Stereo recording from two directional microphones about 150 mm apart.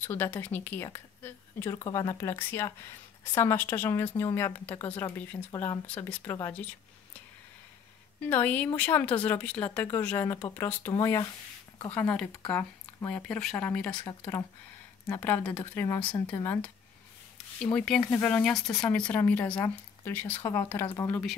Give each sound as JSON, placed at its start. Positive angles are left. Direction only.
{"t": 0.0, "sound": "a woman's voice", "side_deg": 15}
{"t": 8.2, "sound": "a woman's voice", "side_deg": 10}
{"t": 11.9, "sound": "a woman's voice", "side_deg": 10}
{"t": 17.6, "sound": "a woman's voice", "side_deg": 5}
{"t": 18.3, "sound": "a woman's voice", "side_deg": 5}